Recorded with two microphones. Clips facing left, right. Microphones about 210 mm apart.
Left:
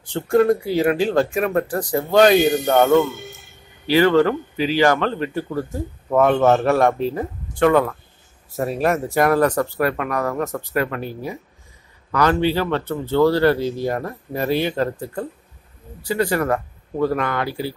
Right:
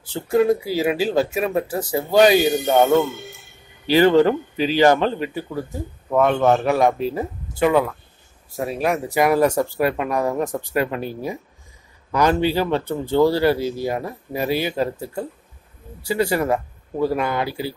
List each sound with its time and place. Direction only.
0.0 s a man's voice: 5° right (ahead or behind)
5.3 s a man's voice: centre (ahead or behind); by 11.1 s 15° right (ahead or behind)
12.1 s a man's voice: 15° right (ahead or behind)